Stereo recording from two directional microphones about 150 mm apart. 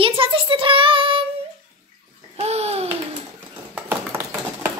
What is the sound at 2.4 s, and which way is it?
Babbling, 45° right (ahead or behind).